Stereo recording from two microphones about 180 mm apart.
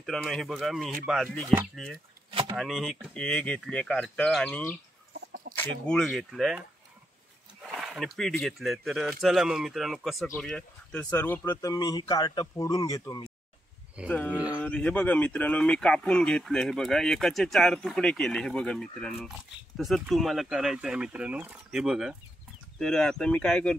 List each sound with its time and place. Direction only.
0.0 s speech: centre (ahead or behind)
2.5 s speech: centre (ahead or behind)
5.1 s chicken: 60° right (ahead or behind)
5.9 s speech: centre (ahead or behind)
7.7 s speech: centre (ahead or behind); by 13.3 s 20° left (ahead or behind)
14.0 s speech: 10° left (ahead or behind)